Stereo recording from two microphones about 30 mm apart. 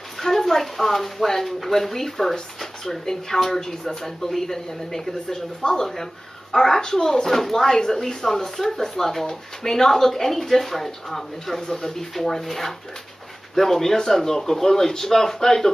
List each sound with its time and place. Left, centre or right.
0.2 s speech: centre
7.2 s speech: centre
11.6 s speech: centre